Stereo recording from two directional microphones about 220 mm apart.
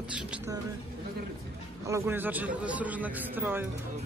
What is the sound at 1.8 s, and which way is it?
Speech, 10° right (ahead or behind).